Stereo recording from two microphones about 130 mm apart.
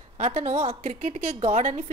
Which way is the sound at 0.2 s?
60° right (ahead or behind).